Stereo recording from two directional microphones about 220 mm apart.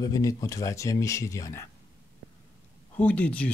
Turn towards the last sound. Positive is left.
turn(degrees=5)  # may be behind; listen again after turning